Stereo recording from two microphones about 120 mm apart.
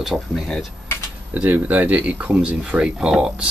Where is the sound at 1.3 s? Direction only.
15° right (ahead or behind).